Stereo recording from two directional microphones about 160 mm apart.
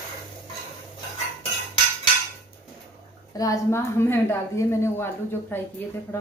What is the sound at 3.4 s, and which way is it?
A woman's voice, 20° left (ahead or behind).